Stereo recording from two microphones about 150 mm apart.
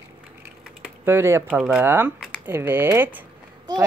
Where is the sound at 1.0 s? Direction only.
15° right (ahead or behind).